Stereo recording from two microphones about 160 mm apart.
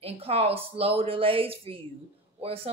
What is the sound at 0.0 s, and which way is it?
A woman's voice, 35° right (ahead or behind).